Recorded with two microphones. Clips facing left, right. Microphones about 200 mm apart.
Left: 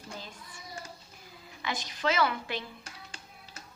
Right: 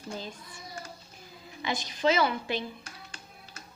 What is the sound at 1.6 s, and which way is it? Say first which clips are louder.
Speech: right 4 dB; 20° right (ahead or behind).